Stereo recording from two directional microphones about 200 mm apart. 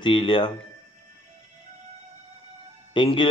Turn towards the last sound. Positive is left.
turn(degrees=25)  # may be behind; listen again after turning